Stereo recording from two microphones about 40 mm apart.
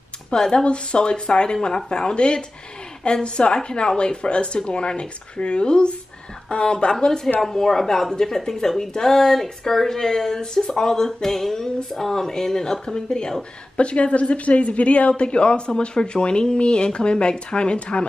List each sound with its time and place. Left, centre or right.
0.3 s a woman's voice: centre
13.7 s speech: left